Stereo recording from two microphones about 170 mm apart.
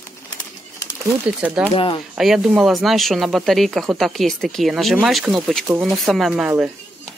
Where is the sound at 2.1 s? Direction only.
5° right (ahead or behind).